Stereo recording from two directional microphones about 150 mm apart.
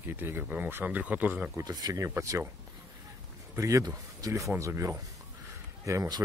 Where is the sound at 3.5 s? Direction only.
20° right (ahead or behind).